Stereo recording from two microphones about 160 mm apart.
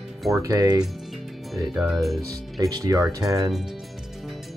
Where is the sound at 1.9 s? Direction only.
Centre (ahead or behind).